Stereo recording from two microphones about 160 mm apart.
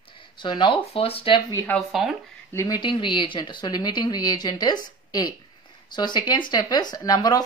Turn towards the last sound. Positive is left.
turn(degrees=25)  # may be behind; listen again after turning